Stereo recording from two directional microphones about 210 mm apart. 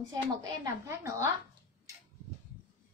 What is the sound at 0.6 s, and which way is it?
Speech, 15° right (ahead or behind).